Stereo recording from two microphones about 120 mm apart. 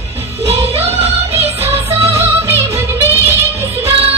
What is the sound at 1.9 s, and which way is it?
Music, 20° right (ahead or behind).